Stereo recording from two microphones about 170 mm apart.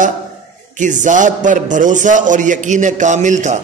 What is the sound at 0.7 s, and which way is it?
A man's voice, 45° right (ahead or behind).